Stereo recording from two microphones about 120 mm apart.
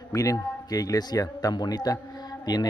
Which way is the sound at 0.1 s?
30° left (ahead or behind).